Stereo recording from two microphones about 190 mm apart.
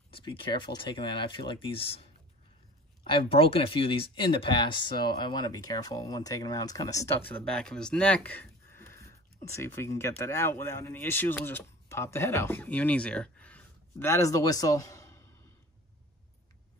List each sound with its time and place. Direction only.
0.1 s speech: 25° left (ahead or behind)
3.1 s speech: 25° left (ahead or behind); by 8.9 s 10° left (ahead or behind)
9.0 s a sound: 15° left (ahead or behind)
9.8 s speech: 15° left (ahead or behind)